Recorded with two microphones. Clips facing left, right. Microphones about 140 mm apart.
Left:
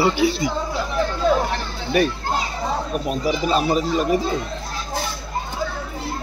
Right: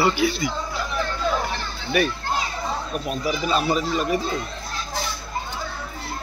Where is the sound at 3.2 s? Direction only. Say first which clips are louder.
Left 2 dB; 40° left (ahead or behind).